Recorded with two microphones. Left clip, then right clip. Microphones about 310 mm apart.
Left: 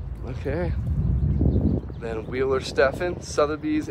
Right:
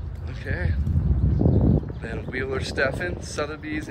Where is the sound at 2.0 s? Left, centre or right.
Centre.